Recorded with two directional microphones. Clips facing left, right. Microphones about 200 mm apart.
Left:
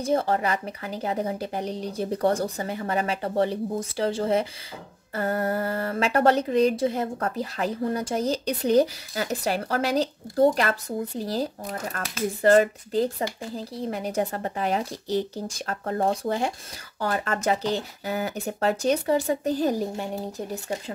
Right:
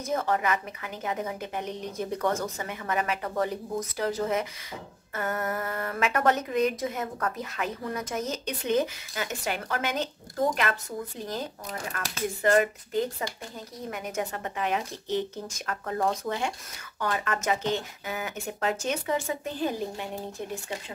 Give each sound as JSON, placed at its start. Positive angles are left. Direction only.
{"t": 0.0, "sound": "speech", "side_deg": 30}